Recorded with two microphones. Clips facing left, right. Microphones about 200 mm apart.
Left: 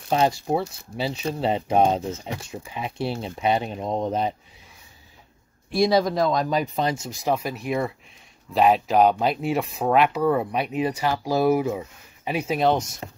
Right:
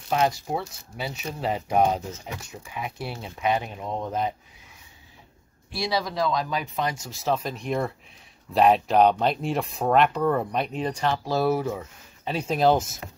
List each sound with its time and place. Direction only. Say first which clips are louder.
0.1 s speech: left 3 dB; 30° left (ahead or behind)
5.7 s speech: left 8 dB; 50° left (ahead or behind); by 7.1 s 30° left (ahead or behind)
7.1 s speech: left 2 dB; 15° left (ahead or behind)
12.5 s speech: right 2 dB; centre (ahead or behind)